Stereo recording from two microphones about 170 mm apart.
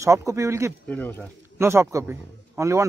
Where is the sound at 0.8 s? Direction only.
10° left (ahead or behind).